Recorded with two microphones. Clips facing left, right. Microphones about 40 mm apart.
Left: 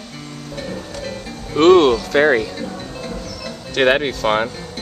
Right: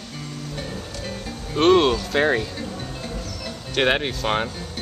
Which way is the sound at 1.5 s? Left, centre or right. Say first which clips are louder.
Left 5 dB; left.